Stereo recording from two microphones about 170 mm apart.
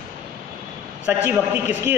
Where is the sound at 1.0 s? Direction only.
10° right (ahead or behind).